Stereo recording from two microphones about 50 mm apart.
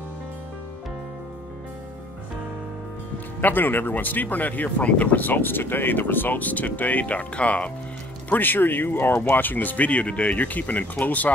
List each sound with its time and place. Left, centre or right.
3.3 s speech: left
8.3 s speech: left